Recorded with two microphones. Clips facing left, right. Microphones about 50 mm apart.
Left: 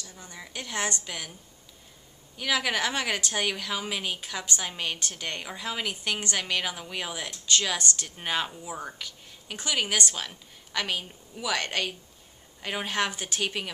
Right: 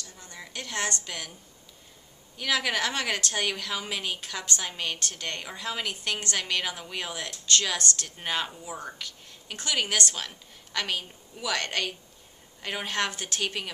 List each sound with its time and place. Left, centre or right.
0.0 s a woman's voice: centre
2.3 s a woman's voice: centre